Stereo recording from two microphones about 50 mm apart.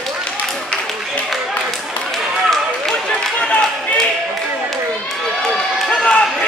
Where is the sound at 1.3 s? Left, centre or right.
Centre.